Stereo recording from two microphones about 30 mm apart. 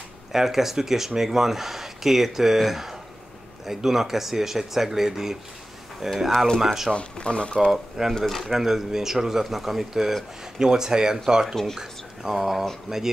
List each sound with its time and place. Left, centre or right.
0.3 s speech: centre
6.9 s speech: left
8.2 s speech: centre
8.5 s speech: centre
10.6 s speech: right
11.8 s speech: centre
12.9 s speech: right